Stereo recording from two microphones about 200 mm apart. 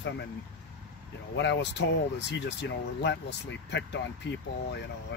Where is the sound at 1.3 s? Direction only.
60° left (ahead or behind).